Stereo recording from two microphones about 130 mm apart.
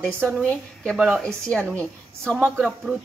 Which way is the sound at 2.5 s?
Centre (ahead or behind).